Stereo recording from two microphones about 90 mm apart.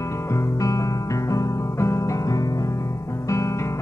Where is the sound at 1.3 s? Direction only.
35° left (ahead or behind).